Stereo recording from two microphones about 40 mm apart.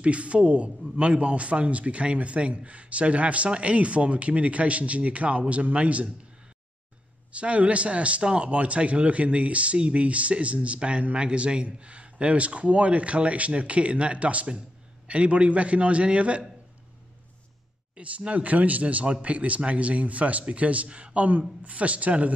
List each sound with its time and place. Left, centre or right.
0.0 s speech: right
7.3 s speech: right
17.9 s speech: right